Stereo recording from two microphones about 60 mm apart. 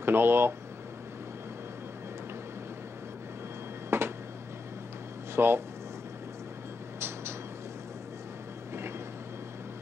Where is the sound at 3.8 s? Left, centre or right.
Right.